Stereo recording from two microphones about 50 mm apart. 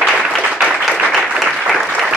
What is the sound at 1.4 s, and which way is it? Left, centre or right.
Applause, centre.